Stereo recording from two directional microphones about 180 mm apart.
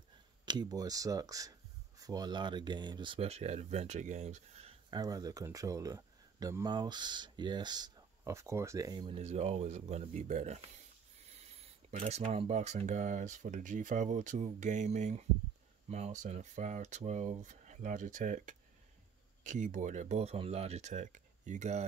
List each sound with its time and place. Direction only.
0.5 s speech: 20° right (ahead or behind); by 4.7 s 35° right (ahead or behind)
4.9 s speech: 20° right (ahead or behind); by 21.8 s 40° right (ahead or behind)